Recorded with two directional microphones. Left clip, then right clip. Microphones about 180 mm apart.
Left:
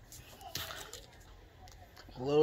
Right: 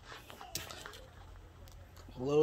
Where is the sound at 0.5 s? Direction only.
35° right (ahead or behind).